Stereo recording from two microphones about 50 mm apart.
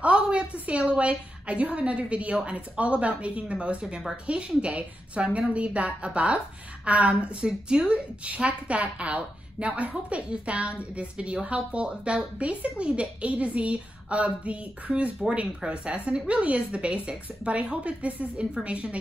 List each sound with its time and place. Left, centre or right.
0.0 s a woman's voice: right